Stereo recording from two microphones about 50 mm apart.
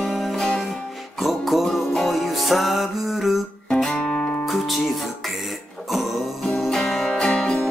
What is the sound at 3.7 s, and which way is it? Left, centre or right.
Music, centre.